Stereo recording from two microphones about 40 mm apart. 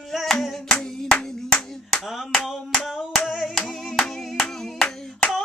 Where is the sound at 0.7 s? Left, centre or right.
Left.